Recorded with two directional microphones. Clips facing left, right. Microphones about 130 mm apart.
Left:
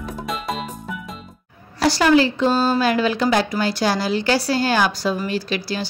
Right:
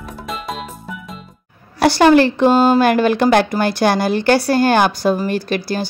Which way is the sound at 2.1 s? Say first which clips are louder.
Right 5 dB; 60° right (ahead or behind).